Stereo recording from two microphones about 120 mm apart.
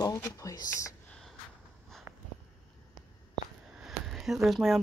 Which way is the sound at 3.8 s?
Centre (ahead or behind).